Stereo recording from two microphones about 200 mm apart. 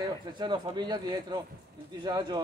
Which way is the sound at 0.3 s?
20° right (ahead or behind).